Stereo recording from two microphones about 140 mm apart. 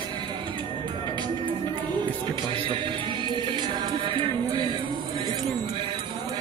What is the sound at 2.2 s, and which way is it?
Music, 35° right (ahead or behind).